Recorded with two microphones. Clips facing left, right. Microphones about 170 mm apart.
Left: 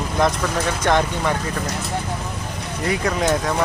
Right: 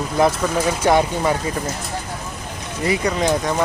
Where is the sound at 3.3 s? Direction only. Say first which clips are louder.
Right 1 dB; centre (ahead or behind).